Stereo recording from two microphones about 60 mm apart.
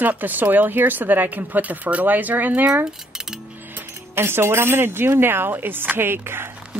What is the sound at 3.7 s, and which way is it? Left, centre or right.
Speech, right.